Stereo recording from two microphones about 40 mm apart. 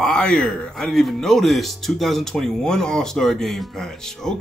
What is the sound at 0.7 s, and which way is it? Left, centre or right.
Speech, centre.